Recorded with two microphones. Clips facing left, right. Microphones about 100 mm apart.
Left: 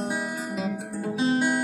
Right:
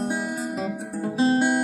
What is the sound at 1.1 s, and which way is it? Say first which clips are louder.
Guitar: right 4 dB; 40° right (ahead or behind).